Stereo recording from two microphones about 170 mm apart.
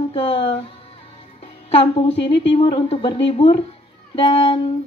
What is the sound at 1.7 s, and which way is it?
A woman's voice, 35° left (ahead or behind).